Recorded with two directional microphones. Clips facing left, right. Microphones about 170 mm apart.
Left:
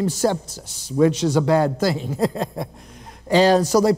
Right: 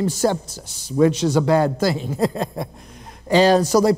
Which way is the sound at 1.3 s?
25° right (ahead or behind).